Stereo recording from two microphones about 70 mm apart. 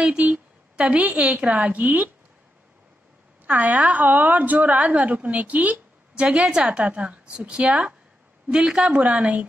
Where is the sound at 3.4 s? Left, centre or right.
Right.